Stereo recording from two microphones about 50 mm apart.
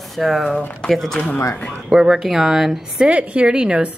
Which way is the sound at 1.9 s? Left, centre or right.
Centre.